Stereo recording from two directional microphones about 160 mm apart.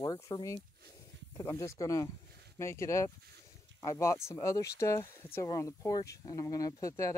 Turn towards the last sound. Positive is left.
turn(degrees=20)  # may be behind; listen again after turning